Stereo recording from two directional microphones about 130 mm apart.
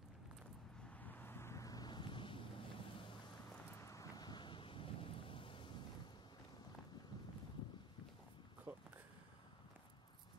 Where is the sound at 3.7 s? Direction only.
20° left (ahead or behind); by 5.8 s 40° left (ahead or behind).